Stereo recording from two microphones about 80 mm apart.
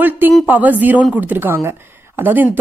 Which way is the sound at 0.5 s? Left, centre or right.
Right.